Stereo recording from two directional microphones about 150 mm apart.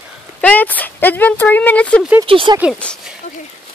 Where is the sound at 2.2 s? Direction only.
35° right (ahead or behind).